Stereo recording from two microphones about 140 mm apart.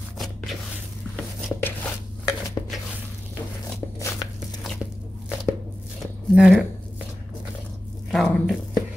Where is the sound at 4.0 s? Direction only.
20° left (ahead or behind).